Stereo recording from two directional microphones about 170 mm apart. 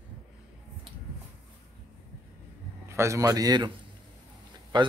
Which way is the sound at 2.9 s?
15° right (ahead or behind).